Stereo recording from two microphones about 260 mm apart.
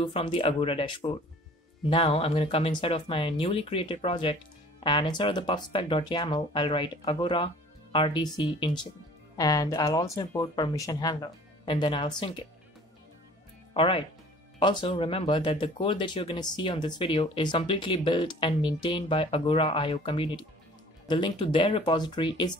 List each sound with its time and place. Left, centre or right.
0.0 s speech: centre
13.7 s speech: left